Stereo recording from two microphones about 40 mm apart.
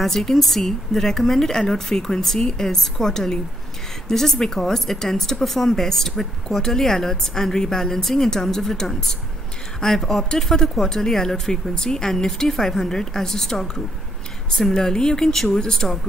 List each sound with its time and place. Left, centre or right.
0.0 s speech: centre